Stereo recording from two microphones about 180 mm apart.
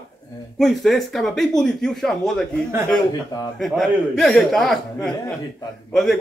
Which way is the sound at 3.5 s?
Centre (ahead or behind).